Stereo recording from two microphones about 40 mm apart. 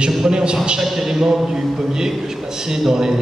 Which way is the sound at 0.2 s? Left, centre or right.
Centre.